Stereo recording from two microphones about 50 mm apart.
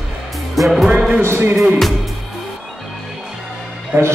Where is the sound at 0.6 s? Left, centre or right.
Centre.